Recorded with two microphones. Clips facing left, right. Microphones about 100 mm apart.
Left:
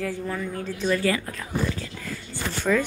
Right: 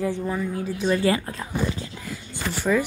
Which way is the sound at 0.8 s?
25° right (ahead or behind).